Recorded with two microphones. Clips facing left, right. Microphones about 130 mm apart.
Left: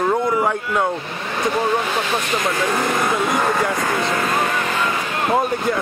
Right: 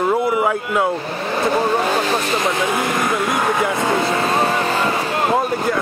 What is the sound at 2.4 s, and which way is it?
Speech, 25° right (ahead or behind).